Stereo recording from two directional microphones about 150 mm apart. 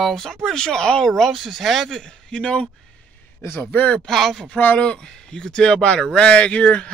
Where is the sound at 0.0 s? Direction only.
Centre (ahead or behind).